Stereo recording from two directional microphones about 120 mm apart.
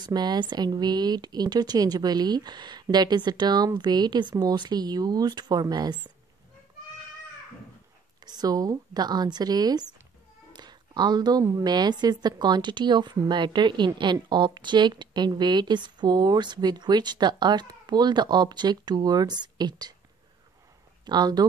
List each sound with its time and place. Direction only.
0.0 s a woman's voice: 35° right (ahead or behind)
8.3 s a woman's voice: 35° right (ahead or behind)
10.5 s a sound: 35° right (ahead or behind)
11.6 s a woman's voice: 35° right (ahead or behind)
21.0 s speech: 35° right (ahead or behind)